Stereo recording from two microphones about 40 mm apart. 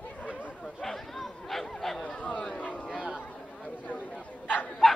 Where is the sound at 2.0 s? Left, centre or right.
Left.